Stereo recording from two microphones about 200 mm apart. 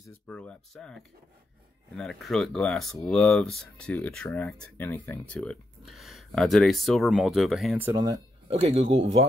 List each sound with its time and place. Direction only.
0.0 s speech: 10° left (ahead or behind)
7.8 s speech: 15° right (ahead or behind)
8.5 s speech: 30° right (ahead or behind)